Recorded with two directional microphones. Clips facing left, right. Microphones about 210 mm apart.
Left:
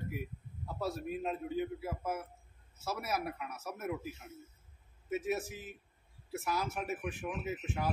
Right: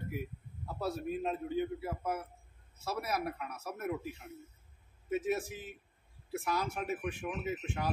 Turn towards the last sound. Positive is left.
turn(degrees=5)  # may be behind; listen again after turning